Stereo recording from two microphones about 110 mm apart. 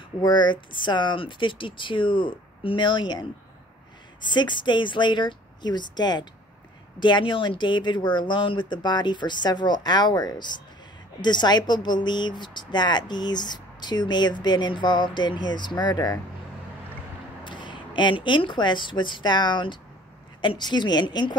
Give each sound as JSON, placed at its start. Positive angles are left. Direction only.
{"t": 0.2, "sound": "speech", "side_deg": 45}
{"t": 17.5, "sound": "a woman's voice", "side_deg": 45}